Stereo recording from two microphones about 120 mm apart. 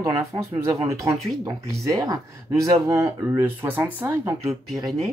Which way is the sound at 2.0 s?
30° right (ahead or behind).